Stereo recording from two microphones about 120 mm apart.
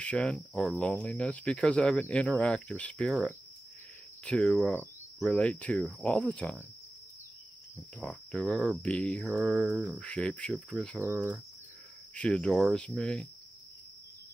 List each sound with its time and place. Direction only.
0.0 s speech: 10° left (ahead or behind)
4.2 s cricket: 10° left (ahead or behind)
5.2 s speech: 10° left (ahead or behind)
7.7 s cricket: 10° left (ahead or behind)
8.5 s speech: centre (ahead or behind)
9.6 s speech: 10° right (ahead or behind)
9.9 s speech: 10° left (ahead or behind)
11.0 s speech: 20° right (ahead or behind)
12.1 s speech: 10° left (ahead or behind)